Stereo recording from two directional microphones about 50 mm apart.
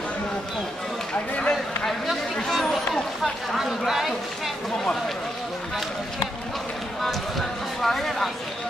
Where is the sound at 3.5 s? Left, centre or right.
Centre.